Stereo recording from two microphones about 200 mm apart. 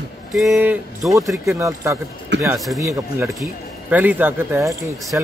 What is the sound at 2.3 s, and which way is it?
Speech, 60° right (ahead or behind).